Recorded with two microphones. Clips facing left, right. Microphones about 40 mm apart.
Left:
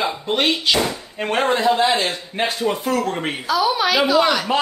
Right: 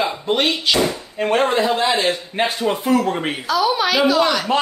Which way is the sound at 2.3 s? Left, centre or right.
Right.